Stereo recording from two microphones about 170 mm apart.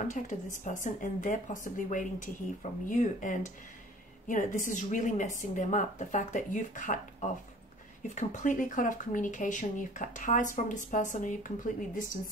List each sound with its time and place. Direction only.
0.1 s speech: 45° left (ahead or behind)